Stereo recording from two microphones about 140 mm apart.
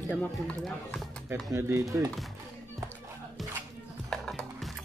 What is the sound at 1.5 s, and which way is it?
Speech, 20° right (ahead or behind).